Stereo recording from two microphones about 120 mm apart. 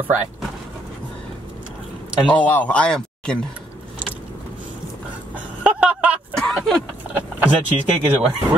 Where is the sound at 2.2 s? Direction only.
10° left (ahead or behind).